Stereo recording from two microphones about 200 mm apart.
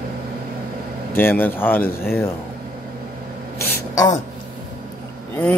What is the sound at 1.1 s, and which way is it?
Speech, 10° left (ahead or behind).